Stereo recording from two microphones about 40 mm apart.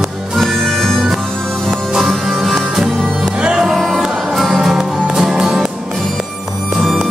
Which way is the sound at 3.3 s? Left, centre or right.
Right.